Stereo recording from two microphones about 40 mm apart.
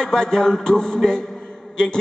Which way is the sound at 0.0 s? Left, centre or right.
Centre.